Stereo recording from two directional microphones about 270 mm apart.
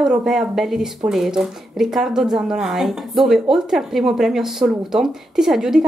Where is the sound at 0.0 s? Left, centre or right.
Centre.